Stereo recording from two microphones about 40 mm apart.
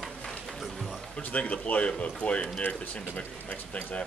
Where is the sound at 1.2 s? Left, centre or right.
Left.